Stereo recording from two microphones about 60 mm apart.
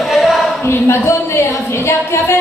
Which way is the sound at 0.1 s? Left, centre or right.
Centre.